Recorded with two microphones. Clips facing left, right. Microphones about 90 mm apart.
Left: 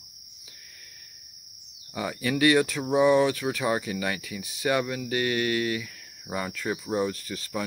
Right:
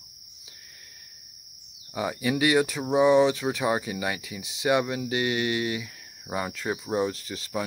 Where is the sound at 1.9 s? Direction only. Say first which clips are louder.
Right 1 dB; 15° right (ahead or behind).